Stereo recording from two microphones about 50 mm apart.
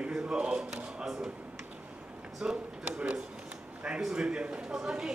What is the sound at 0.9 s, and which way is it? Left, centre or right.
Speech, centre.